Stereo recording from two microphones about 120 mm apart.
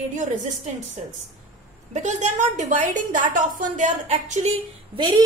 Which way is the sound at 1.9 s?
85° right.